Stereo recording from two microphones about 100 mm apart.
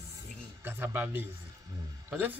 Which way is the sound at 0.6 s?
20° right (ahead or behind).